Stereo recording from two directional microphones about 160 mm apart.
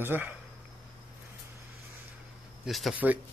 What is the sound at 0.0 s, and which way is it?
Speech, 15° right (ahead or behind).